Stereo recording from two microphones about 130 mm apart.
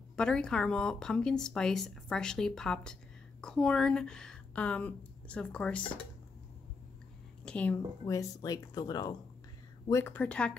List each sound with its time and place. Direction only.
0.1 s speech: 5° left (ahead or behind)
7.4 s speech: 10° left (ahead or behind)
8.1 s speech: 25° left (ahead or behind)
9.8 s speech: 20° left (ahead or behind)